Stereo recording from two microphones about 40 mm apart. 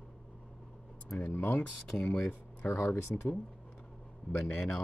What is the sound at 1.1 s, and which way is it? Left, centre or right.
Speech, left.